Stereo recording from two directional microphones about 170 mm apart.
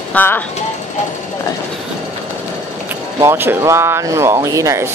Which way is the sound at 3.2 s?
15° right (ahead or behind).